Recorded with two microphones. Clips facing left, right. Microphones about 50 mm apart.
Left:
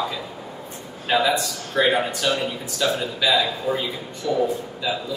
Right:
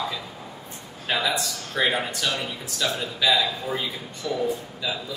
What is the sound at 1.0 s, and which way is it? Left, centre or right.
A man's voice, centre.